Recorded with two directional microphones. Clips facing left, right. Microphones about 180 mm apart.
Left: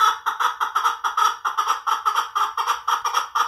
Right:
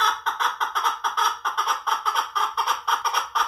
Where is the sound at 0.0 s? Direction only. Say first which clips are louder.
Left 1 dB; 15° right (ahead or behind).